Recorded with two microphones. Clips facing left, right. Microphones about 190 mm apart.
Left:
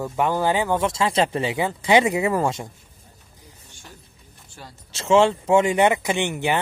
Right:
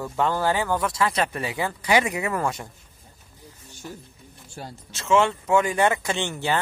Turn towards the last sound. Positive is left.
turn(degrees=20)  # may be behind; listen again after turning